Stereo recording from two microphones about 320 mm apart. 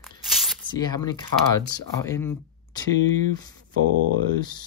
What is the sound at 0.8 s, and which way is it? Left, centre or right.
Speech, centre.